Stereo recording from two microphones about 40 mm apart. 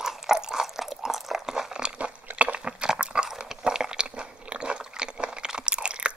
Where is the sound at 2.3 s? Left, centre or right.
Right.